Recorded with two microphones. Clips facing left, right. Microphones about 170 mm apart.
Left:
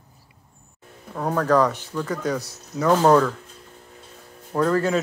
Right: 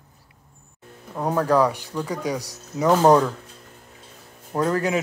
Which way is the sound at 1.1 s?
10° right (ahead or behind).